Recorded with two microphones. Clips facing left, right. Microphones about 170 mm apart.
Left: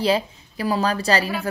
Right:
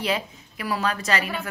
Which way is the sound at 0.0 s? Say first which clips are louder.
Left 6 dB; 30° left (ahead or behind).